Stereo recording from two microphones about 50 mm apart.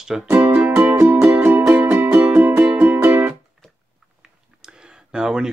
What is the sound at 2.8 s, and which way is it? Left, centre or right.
Music, right.